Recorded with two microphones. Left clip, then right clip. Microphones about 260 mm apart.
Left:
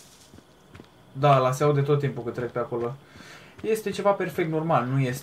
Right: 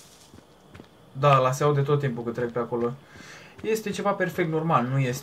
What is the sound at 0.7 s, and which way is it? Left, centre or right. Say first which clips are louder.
Speech: left 2 dB; centre.